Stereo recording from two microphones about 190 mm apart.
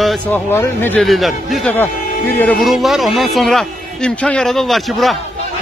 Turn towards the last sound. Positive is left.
turn(degrees=0)  # may be behind; listen again after turning